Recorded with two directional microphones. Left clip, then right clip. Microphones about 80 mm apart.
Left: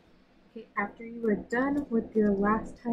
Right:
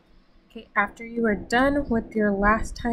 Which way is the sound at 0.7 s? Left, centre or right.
Right.